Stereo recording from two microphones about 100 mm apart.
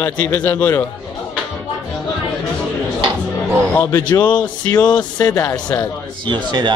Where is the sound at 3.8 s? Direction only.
25° left (ahead or behind).